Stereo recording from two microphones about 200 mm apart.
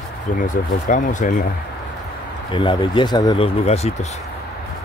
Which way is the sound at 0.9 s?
40° left (ahead or behind).